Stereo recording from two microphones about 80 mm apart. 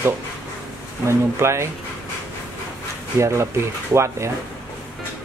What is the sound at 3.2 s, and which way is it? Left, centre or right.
Speech, right.